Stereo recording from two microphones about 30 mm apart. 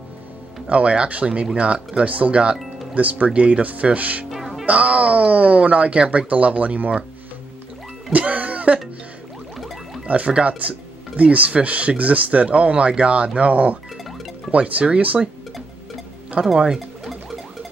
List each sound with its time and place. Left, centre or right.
0.7 s speech: right
2.0 s speech: right
4.3 s music: centre
4.6 s speech: right
6.0 s speech: right
8.1 s music: right
9.6 s music: centre
10.0 s speech: right
13.5 s speech: right
16.4 s speech: right
16.7 s a sound: centre